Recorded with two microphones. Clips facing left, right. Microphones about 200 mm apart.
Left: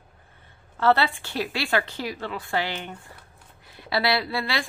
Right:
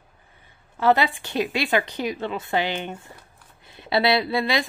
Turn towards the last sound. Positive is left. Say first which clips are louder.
# right 5 dB
turn(degrees=-20)  # may be behind; listen again after turning